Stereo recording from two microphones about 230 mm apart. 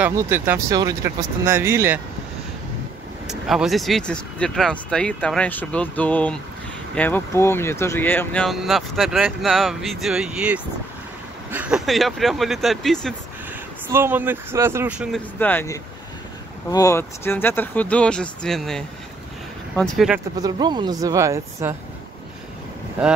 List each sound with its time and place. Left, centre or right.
0.0 s speech: centre
3.3 s speech: centre
13.5 s speech: centre
20.3 s speech: centre
23.0 s speech: centre